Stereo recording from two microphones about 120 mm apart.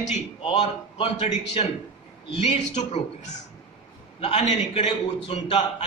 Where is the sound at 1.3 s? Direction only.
60° left (ahead or behind).